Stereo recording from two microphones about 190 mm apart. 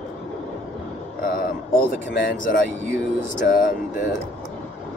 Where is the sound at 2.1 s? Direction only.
45° left (ahead or behind).